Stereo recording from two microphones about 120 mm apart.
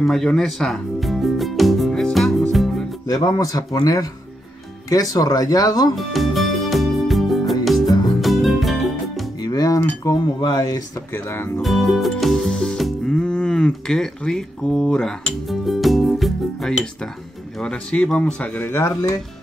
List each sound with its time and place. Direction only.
0.0 s music: 5° left (ahead or behind)
3.2 s speech: 35° left (ahead or behind)
5.9 s music: centre (ahead or behind)
9.4 s chink: 30° left (ahead or behind)
10.4 s speech: 35° left (ahead or behind)
11.1 s speech: 20° left (ahead or behind)
11.6 s music: centre (ahead or behind)
17.6 s speech: 10° left (ahead or behind); by 19.1 s 25° left (ahead or behind)